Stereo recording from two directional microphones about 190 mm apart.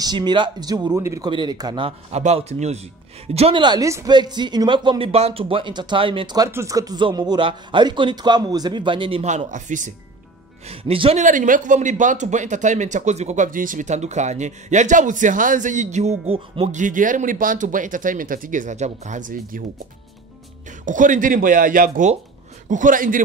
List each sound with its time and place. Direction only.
0.0 s speech: 25° right (ahead or behind); by 9.9 s 40° right (ahead or behind)
10.7 s a man's voice: 30° right (ahead or behind); by 19.6 s 45° right (ahead or behind)
20.8 s speech: 45° right (ahead or behind)